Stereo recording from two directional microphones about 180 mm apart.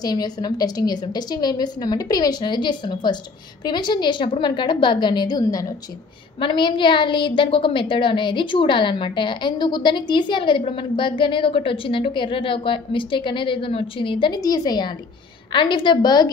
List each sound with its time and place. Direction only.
0.0 s a woman's voice: 20° left (ahead or behind)